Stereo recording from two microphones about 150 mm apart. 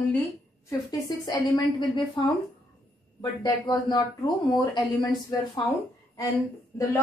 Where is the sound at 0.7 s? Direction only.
25° left (ahead or behind).